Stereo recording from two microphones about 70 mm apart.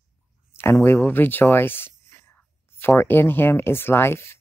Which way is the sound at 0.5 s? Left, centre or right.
Left.